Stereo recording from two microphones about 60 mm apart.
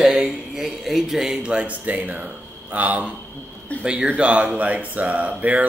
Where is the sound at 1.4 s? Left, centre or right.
Centre.